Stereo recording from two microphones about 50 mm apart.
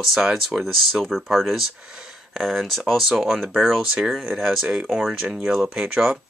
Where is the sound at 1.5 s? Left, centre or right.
Centre.